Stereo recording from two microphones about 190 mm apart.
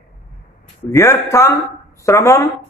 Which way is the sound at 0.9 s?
15° left (ahead or behind).